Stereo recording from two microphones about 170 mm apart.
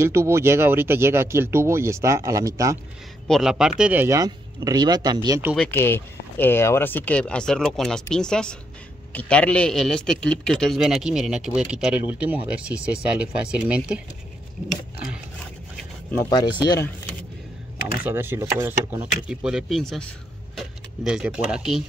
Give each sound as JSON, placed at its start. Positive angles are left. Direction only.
{"t": 0.0, "sound": "speech", "side_deg": -15}
{"t": 3.3, "sound": "speech", "side_deg": 0}
{"t": 5.6, "sound": "a man's voice", "side_deg": 10}
{"t": 16.3, "sound": "speech", "side_deg": 25}
{"t": 18.0, "sound": "a man's voice", "side_deg": -15}